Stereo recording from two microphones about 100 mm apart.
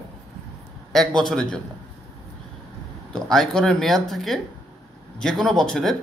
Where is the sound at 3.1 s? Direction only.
5° left (ahead or behind).